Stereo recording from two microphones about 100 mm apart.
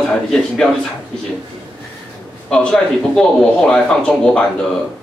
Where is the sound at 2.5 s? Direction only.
5° left (ahead or behind).